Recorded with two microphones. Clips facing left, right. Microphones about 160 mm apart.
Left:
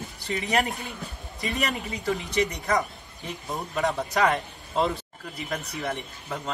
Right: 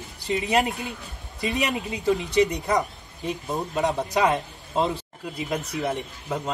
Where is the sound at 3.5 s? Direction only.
20° right (ahead or behind).